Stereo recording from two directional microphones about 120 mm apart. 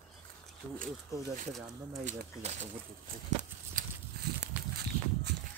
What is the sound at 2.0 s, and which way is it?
Speech, 75° right (ahead or behind).